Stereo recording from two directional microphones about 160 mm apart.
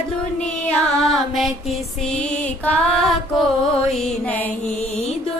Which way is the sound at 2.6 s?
5° left (ahead or behind).